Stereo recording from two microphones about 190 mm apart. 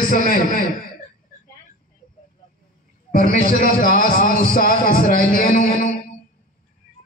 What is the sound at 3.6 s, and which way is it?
A man's voice, 45° left (ahead or behind).